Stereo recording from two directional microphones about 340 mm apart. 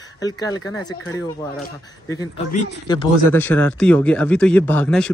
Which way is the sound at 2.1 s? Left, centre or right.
Centre.